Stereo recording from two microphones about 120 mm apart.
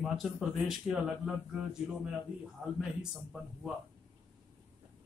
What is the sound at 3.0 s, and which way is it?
Speech, 5° right (ahead or behind).